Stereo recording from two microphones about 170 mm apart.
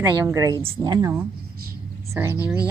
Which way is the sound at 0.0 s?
20° right (ahead or behind).